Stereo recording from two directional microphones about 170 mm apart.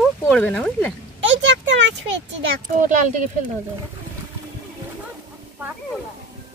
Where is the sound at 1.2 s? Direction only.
90° right.